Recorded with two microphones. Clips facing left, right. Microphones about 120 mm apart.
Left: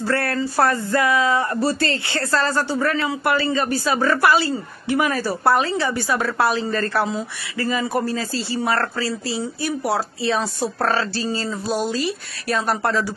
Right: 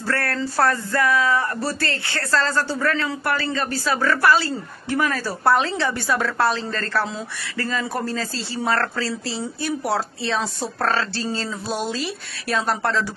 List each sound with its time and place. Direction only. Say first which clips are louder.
0.1 s speech: left 1 dB; 15° left (ahead or behind)
5.4 s speech: even; 5° left (ahead or behind)